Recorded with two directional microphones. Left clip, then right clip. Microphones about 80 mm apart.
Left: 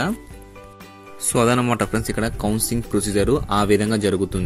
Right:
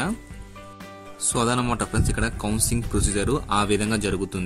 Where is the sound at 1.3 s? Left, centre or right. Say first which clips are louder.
Left 5 dB; left.